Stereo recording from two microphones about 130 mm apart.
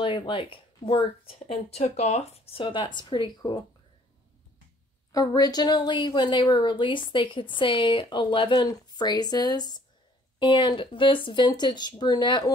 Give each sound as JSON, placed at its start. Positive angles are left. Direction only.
{"t": 0.0, "sound": "speech", "side_deg": 40}
{"t": 5.1, "sound": "speech", "side_deg": 30}